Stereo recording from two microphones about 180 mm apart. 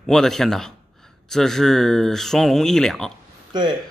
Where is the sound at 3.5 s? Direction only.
25° right (ahead or behind).